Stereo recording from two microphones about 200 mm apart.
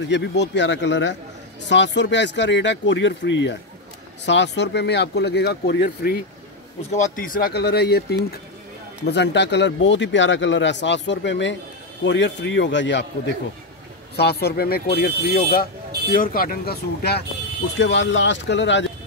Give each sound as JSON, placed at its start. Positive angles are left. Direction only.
{"t": 0.1, "sound": "speech", "side_deg": 60}
{"t": 6.9, "sound": "speech", "side_deg": 40}
{"t": 14.1, "sound": "speech", "side_deg": 50}
{"t": 17.7, "sound": "speech", "side_deg": 65}